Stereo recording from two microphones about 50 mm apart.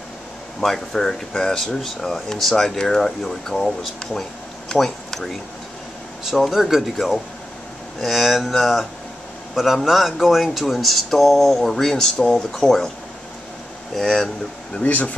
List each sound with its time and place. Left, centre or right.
0.6 s speech: centre
9.8 s speech: centre
14.0 s speech: centre
14.8 s speech: left